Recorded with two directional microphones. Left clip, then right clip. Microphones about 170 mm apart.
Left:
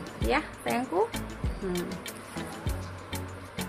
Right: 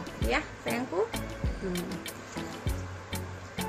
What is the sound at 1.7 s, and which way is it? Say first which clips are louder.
Music: left 2 dB; centre (ahead or behind).